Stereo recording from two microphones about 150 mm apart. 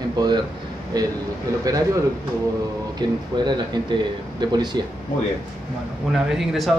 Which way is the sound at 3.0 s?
30° right (ahead or behind).